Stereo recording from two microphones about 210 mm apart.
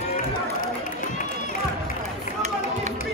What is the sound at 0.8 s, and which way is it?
Run, 40° left (ahead or behind).